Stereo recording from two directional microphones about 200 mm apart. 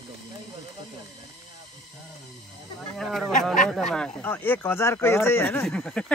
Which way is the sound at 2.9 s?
Centre (ahead or behind).